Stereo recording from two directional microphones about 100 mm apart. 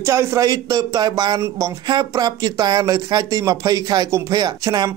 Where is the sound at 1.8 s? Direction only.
45° right (ahead or behind).